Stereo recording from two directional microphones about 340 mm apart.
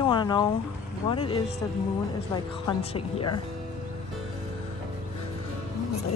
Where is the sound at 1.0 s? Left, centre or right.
Centre.